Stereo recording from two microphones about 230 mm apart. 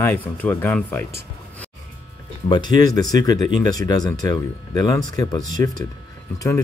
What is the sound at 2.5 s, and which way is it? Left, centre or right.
Speech, centre.